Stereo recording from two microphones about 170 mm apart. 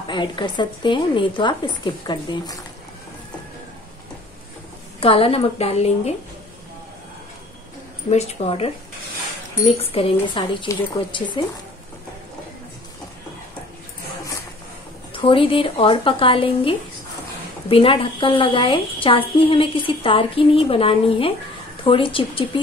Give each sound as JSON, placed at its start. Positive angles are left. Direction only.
{"t": 0.0, "sound": "speech", "side_deg": 25}
{"t": 5.0, "sound": "a woman's voice", "side_deg": 35}
{"t": 8.1, "sound": "a woman's voice", "side_deg": 40}
{"t": 15.1, "sound": "a woman's voice", "side_deg": 30}